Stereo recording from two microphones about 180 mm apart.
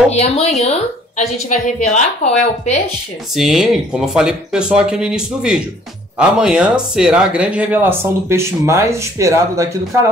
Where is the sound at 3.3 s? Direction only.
Centre (ahead or behind).